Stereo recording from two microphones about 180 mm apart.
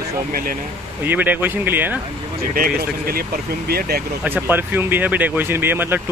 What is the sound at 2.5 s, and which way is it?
Speech, 55° right (ahead or behind).